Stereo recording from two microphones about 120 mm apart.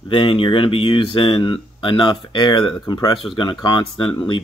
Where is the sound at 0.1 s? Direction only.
45° left (ahead or behind).